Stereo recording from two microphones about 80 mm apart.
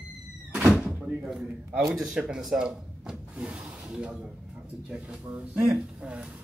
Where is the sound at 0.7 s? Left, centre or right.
Centre.